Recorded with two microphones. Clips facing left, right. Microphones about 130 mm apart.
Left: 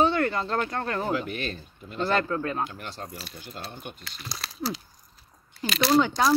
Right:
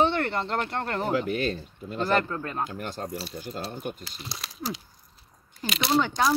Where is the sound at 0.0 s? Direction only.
25° right (ahead or behind).